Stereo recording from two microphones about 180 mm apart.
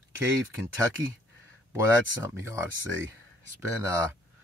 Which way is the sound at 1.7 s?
15° right (ahead or behind).